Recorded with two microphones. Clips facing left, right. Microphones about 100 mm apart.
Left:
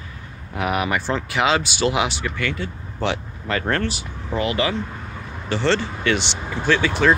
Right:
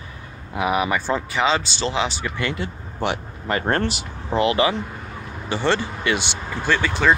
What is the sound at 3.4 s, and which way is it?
Speech, 30° right (ahead or behind).